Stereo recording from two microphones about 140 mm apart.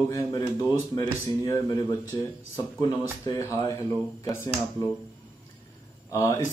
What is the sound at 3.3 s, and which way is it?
Speech, 20° left (ahead or behind).